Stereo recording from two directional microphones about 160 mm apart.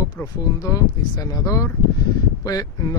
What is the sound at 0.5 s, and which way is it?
Speech, 20° left (ahead or behind).